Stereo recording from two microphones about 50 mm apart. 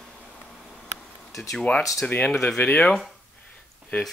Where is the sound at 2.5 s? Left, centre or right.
Left.